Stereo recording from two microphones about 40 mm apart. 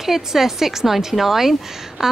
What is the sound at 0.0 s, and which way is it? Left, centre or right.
Speech, centre.